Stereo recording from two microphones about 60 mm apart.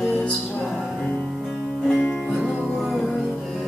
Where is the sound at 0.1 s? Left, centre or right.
Left.